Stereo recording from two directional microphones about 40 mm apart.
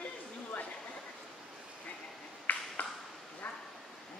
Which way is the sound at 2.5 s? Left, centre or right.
Left.